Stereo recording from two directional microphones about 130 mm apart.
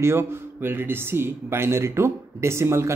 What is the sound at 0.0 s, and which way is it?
A man's voice, 20° right (ahead or behind).